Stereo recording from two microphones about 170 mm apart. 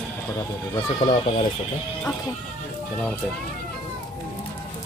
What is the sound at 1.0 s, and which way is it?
Speech, 25° left (ahead or behind).